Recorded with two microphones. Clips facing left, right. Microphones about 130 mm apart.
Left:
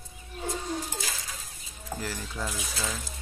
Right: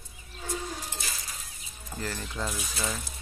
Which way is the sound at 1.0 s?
90° left.